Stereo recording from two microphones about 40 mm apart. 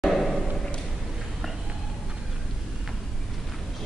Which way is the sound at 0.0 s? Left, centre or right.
Centre.